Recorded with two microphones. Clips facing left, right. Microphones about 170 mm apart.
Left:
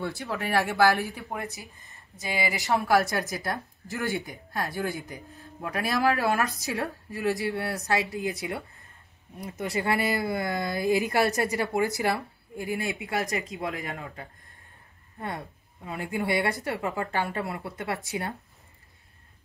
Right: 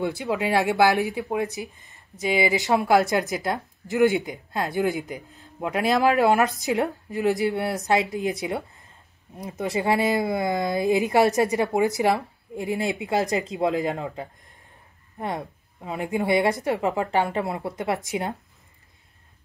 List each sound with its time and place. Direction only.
0.0 s a woman's voice: 15° right (ahead or behind)